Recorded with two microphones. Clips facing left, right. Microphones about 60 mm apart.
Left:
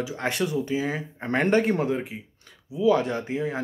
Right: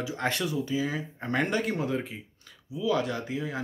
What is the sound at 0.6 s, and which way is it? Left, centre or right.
Speech, left.